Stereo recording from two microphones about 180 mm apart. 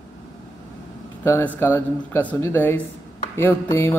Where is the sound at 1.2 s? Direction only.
15° left (ahead or behind).